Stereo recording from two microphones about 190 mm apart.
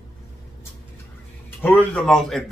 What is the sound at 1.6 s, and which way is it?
Speech, 10° left (ahead or behind).